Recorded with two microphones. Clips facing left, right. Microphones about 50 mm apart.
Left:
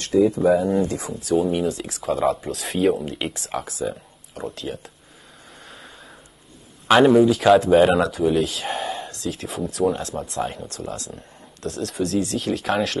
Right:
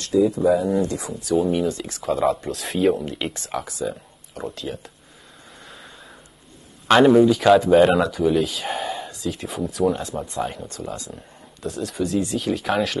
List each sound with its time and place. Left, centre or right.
0.1 s speech: centre
0.8 s speech: left
1.3 s speech: centre
6.9 s speech: centre